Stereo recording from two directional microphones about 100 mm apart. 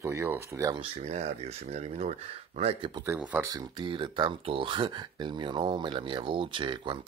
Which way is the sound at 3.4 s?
40° right (ahead or behind).